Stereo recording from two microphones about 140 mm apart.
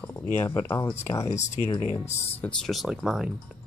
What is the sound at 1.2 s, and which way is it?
Speech, 55° left (ahead or behind).